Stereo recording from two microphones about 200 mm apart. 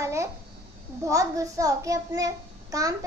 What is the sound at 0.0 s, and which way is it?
Babbling, 15° right (ahead or behind).